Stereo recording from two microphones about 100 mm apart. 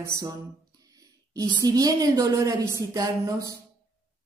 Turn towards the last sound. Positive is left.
turn(degrees=-35)  # may be behind; listen again after turning